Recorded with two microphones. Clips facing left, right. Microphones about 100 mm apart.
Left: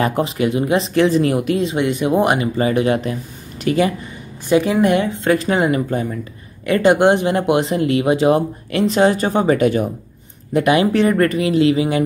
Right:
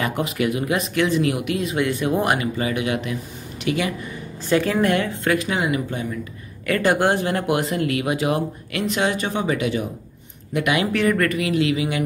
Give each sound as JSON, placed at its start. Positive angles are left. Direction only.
{"t": 0.0, "sound": "speech", "side_deg": 30}
{"t": 4.5, "sound": "speech", "side_deg": 15}
{"t": 5.3, "sound": "speech", "side_deg": 35}
{"t": 6.6, "sound": "speech", "side_deg": 20}
{"t": 10.5, "sound": "speech", "side_deg": 35}